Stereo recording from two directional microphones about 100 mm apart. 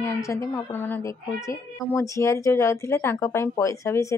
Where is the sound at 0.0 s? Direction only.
30° left (ahead or behind).